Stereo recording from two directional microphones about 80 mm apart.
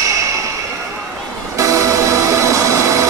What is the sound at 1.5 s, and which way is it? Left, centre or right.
Music, right.